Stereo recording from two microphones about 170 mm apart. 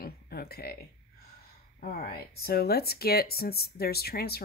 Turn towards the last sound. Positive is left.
turn(degrees=65)  # may be behind; listen again after turning